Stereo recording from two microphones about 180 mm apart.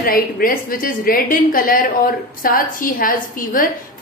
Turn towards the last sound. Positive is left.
turn(degrees=50)  # may be behind; listen again after turning